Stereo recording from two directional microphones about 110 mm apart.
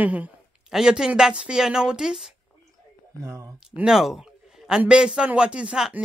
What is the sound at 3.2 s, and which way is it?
Speech, 25° right (ahead or behind).